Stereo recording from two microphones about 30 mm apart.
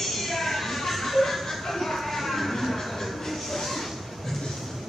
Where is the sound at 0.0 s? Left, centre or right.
Centre.